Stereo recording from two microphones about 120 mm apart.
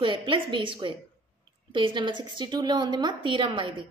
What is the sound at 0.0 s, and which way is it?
A woman's voice, 45° right (ahead or behind).